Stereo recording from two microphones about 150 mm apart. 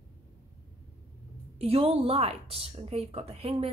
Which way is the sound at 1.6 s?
40° right (ahead or behind).